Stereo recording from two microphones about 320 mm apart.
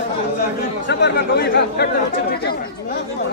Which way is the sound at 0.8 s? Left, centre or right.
Left.